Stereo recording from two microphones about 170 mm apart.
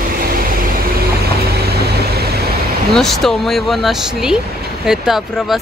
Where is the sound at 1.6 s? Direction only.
70° right (ahead or behind).